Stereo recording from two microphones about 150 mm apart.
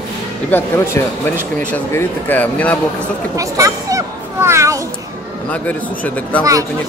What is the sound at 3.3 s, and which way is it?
Speech, 20° right (ahead or behind).